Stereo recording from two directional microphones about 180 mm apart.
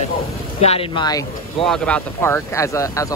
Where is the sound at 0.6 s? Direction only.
35° left (ahead or behind).